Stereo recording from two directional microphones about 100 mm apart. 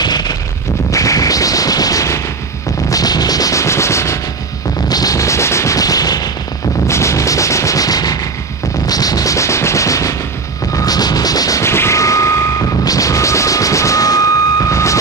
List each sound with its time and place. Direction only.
0.0 s a sound: 40° left (ahead or behind)
0.9 s gunshot: 35° left (ahead or behind)
2.9 s a sound: 40° left (ahead or behind)
6.9 s gunshot: 30° left (ahead or behind)
10.7 s reversing beeps: 35° left (ahead or behind)
12.8 s music: 35° left (ahead or behind)